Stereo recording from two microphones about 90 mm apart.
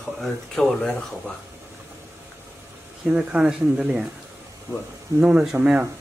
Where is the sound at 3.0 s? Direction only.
10° right (ahead or behind).